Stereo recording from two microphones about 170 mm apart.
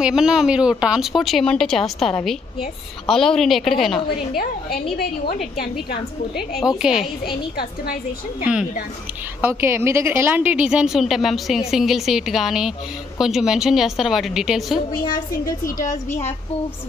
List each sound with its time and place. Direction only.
0.0 s a woman's voice: 5° right (ahead or behind)
4.4 s a woman's voice: 60° left (ahead or behind)
6.8 s a woman's voice: 5° right (ahead or behind)
7.5 s a woman's voice: 60° left (ahead or behind)
9.4 s a woman's voice: 15° right (ahead or behind)
15.1 s a woman's voice: 20° left (ahead or behind)
16.1 s speech: 40° left (ahead or behind)